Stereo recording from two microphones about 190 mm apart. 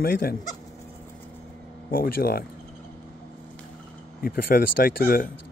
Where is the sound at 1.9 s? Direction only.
50° left (ahead or behind).